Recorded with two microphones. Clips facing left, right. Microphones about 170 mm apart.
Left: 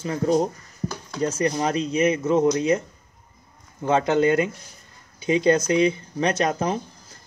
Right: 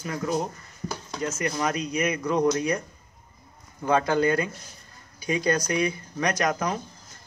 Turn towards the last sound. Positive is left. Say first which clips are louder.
# left 3 dB
turn(degrees=30)  # may be behind; listen again after turning